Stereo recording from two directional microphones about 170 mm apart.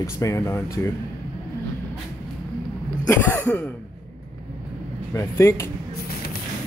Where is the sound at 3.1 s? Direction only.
10° left (ahead or behind).